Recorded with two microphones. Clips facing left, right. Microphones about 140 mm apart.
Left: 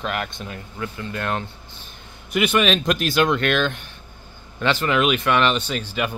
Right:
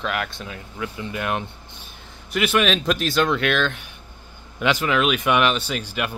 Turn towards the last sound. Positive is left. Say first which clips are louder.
# even
turn(degrees=-5)  # may be behind; listen again after turning